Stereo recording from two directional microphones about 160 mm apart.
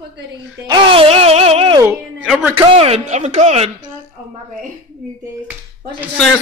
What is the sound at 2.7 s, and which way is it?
Speech, 40° right (ahead or behind).